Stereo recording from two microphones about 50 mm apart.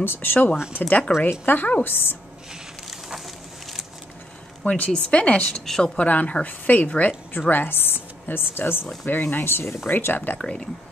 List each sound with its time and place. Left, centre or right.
0.0 s speech: left
0.7 s a woman's voice: left
2.9 s a sound: centre
4.6 s a woman's voice: left
5.9 s a woman's voice: left
7.3 s speech: left
9.0 s a woman's voice: left
9.5 s speech: left
9.8 s a woman's voice: left
10.4 s speech: centre